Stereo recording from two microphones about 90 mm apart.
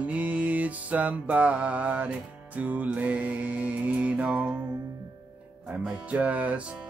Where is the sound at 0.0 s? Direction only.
15° right (ahead or behind).